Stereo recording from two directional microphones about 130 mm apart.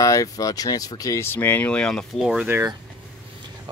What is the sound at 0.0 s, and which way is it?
Speech, 25° left (ahead or behind).